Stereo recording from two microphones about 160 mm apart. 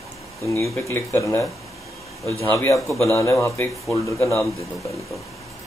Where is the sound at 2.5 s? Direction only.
15° left (ahead or behind).